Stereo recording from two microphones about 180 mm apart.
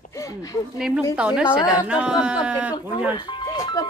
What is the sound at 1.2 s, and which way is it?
A woman's voice, 5° right (ahead or behind).